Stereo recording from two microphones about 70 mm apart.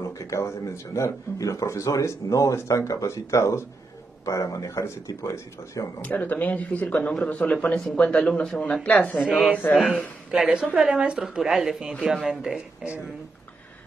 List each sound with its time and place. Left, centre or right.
0.0 s speech: left
5.9 s speech: left
9.2 s speech: centre